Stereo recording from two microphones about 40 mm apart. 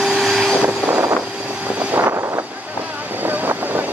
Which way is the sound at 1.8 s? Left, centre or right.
Right.